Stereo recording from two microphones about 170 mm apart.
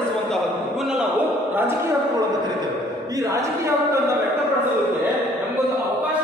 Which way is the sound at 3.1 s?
20° right (ahead or behind).